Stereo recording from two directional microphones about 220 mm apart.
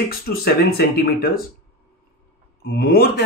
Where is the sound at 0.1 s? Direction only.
45° left (ahead or behind).